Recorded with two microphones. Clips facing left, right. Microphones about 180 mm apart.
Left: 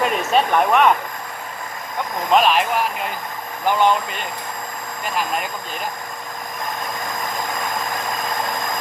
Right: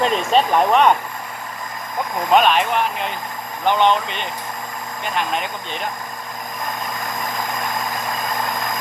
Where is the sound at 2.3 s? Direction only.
5° left (ahead or behind).